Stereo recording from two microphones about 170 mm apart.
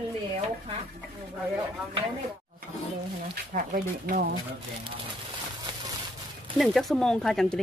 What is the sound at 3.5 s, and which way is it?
Speech, 50° right (ahead or behind).